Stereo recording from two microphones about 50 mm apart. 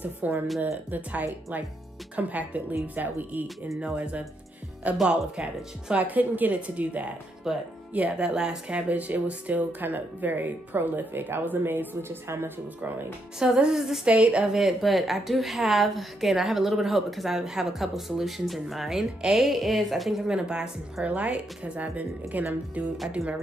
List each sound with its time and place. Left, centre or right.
0.0 s speech: right
3.9 s speech: right
5.9 s speech: right
7.5 s a woman's voice: centre; by 12.2 s right
13.4 s speech: centre
14.0 s speech: right
14.5 s a woman's voice: centre; by 22.8 s right